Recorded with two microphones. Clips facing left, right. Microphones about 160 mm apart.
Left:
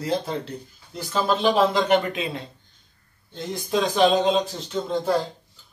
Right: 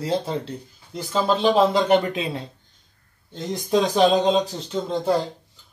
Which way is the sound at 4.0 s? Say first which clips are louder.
Even; 35° right (ahead or behind).